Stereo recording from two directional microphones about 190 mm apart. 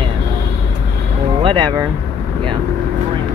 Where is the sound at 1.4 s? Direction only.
25° right (ahead or behind).